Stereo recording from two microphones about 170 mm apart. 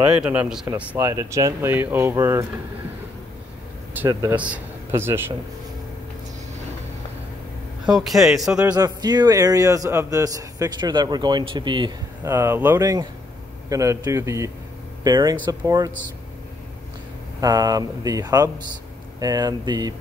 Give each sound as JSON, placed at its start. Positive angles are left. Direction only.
{"t": 0.2, "sound": "a man's voice", "side_deg": -5}
{"t": 4.1, "sound": "a man's voice", "side_deg": -20}
{"t": 4.4, "sound": "speech", "side_deg": -10}
{"t": 7.8, "sound": "a man's voice", "side_deg": 0}
{"t": 8.7, "sound": "a man's voice", "side_deg": -25}
{"t": 12.3, "sound": "a man's voice", "side_deg": -15}
{"t": 17.4, "sound": "a man's voice", "side_deg": -20}